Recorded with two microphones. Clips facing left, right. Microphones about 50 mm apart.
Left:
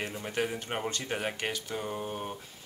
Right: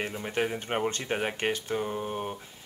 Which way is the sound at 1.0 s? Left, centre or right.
Centre.